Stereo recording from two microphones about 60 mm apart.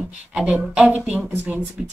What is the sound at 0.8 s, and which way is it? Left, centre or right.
Speech, right.